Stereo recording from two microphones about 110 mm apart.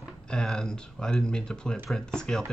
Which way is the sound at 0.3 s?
5° left (ahead or behind).